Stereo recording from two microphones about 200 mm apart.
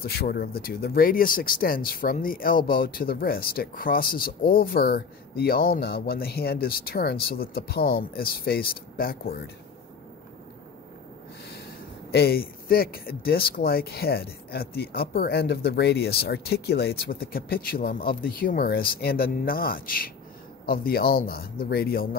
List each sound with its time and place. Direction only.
0.0 s speech: 50° left (ahead or behind)
12.1 s speech: 50° left (ahead or behind)